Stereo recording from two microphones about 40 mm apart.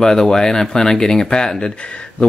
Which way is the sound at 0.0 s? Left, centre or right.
Centre.